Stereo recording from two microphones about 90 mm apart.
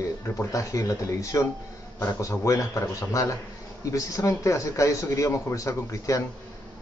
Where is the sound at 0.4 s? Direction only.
35° left (ahead or behind).